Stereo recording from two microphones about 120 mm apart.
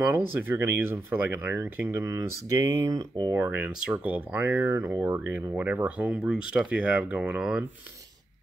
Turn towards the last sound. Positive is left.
turn(degrees=-10)  # may be behind; listen again after turning